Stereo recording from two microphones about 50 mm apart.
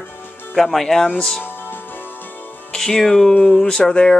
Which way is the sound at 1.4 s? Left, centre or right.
Left.